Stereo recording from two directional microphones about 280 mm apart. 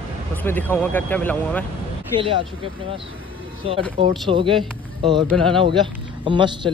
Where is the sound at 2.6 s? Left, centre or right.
Centre.